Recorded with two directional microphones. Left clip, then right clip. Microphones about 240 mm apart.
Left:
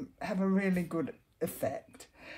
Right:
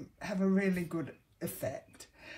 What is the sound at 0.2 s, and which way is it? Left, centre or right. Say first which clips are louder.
Speech: even; left.